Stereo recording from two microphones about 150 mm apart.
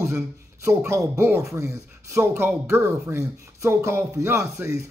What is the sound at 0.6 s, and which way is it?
A man's voice, 20° right (ahead or behind).